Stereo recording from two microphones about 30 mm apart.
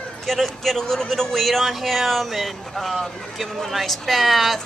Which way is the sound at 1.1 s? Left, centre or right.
Centre.